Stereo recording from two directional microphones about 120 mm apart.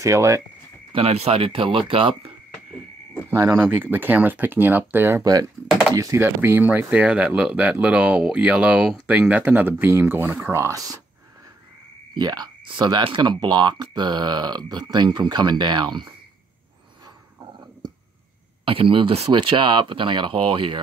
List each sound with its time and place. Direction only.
0.0 s speech: 25° right (ahead or behind)
0.9 s speech: 60° right (ahead or behind)
3.8 s speech: 15° right (ahead or behind)
5.2 s speech: 30° right (ahead or behind)
5.7 s typing: centre (ahead or behind)
5.9 s speech: 30° right (ahead or behind)
6.2 s speech: 20° right (ahead or behind)
12.2 s speech: 35° right (ahead or behind)
17.0 s a sound: 30° right (ahead or behind)
18.7 s speech: 50° right (ahead or behind)